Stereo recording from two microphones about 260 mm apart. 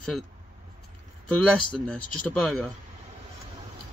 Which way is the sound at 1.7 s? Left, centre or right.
Centre.